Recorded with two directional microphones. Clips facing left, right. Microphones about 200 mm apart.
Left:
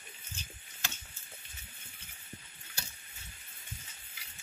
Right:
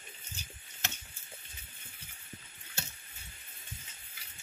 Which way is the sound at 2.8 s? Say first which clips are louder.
Right 4 dB; 25° right (ahead or behind).